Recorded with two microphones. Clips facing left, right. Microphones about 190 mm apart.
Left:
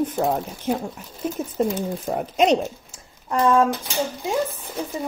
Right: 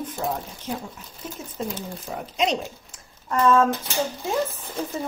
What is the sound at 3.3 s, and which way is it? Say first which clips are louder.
Speech: left 1 dB; 15° left (ahead or behind).